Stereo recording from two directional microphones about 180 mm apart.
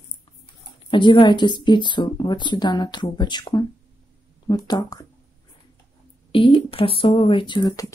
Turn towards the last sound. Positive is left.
turn(degrees=25)  # may be behind; listen again after turning